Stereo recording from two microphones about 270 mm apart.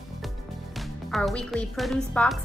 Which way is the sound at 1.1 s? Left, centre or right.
Centre.